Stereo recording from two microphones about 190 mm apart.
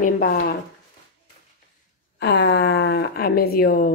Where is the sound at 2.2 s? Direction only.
60° left (ahead or behind).